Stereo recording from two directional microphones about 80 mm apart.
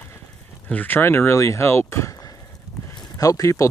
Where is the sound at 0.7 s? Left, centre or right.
Left.